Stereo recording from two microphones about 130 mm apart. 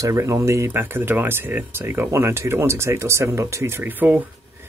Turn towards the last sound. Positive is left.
turn(degrees=-15)  # may be behind; listen again after turning